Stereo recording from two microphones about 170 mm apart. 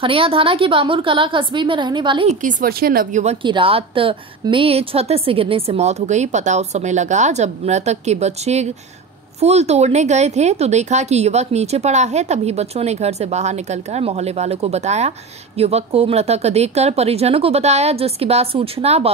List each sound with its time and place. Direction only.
0.0 s a woman's voice: 30° right (ahead or behind)
2.4 s a woman's voice: 60° right (ahead or behind)
3.4 s speech: 30° right (ahead or behind)